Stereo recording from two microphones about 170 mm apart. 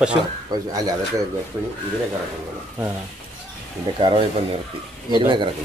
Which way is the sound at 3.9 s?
30° right (ahead or behind).